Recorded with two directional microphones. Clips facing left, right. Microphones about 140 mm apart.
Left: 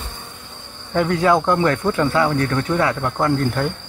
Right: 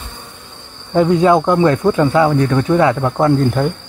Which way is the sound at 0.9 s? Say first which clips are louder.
Right 5 dB; 20° right (ahead or behind).